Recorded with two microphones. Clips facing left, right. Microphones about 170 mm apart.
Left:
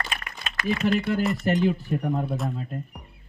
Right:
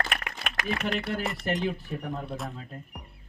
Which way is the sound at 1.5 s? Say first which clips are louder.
Left 5 dB; 45° left (ahead or behind).